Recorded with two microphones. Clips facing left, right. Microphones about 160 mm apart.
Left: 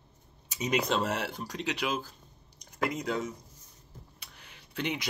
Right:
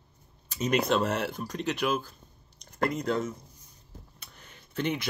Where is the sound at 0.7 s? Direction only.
60° right (ahead or behind).